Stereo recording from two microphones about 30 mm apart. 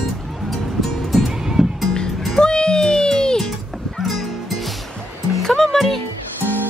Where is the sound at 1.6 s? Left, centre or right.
Centre.